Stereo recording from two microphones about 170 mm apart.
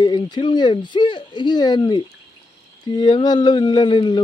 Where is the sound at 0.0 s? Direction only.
25° left (ahead or behind).